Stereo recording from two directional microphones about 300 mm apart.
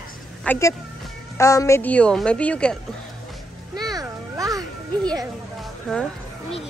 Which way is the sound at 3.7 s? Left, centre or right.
Centre.